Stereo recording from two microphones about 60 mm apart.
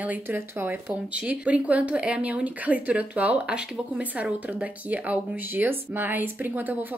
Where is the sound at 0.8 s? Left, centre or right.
Right.